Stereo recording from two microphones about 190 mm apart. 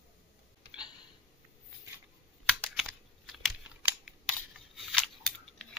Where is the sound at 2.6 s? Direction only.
Centre (ahead or behind).